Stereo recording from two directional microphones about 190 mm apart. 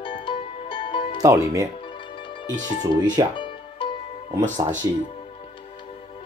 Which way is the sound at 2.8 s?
20° right (ahead or behind).